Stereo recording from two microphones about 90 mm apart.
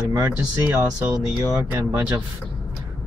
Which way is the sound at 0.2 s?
20° right (ahead or behind).